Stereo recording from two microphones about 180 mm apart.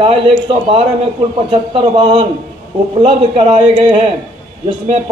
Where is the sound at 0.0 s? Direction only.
30° right (ahead or behind).